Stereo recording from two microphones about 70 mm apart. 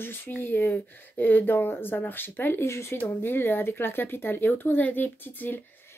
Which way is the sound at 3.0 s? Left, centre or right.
Left.